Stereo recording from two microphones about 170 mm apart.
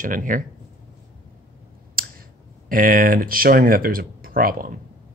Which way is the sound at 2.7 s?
55° right (ahead or behind).